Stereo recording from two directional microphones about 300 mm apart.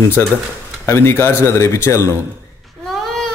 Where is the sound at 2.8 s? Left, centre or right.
Centre.